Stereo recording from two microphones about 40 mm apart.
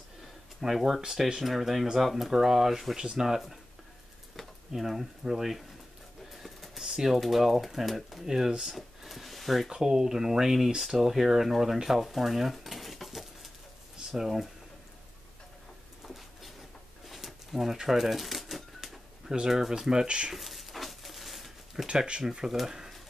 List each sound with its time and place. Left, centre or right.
0.6 s speech: centre
8.3 s speech: centre
8.7 s a sound: centre
9.7 s speech: centre
16.1 s a sound: centre
17.8 s typewriter: centre
19.4 s speech: centre; by 20.3 s right
20.3 s a sound: centre
22.2 s speech: centre